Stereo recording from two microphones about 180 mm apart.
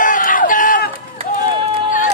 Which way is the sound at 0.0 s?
45° left (ahead or behind).